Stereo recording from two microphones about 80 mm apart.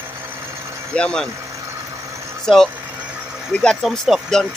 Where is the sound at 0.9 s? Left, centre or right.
Centre.